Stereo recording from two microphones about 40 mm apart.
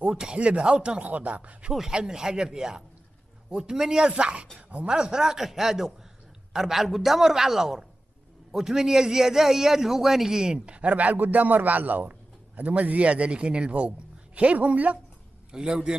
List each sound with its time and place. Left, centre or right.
0.1 s speech: right
1.0 s a man's voice: right
1.7 s a man's voice: centre; by 4.8 s right
4.8 s a man's voice: centre
10.5 s a man's voice: right
15.5 s speech: centre